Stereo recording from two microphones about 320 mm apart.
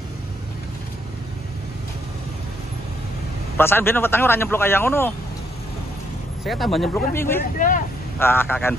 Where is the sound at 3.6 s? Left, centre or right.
Centre.